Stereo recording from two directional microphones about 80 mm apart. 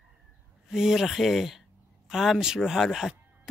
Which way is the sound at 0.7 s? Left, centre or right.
Centre.